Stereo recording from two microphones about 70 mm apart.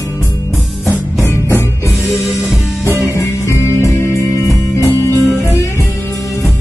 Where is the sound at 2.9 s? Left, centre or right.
Right.